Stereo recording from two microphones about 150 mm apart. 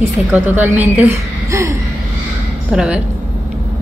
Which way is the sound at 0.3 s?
15° right (ahead or behind).